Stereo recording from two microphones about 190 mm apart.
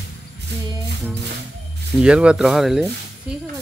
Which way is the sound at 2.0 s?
5° right (ahead or behind).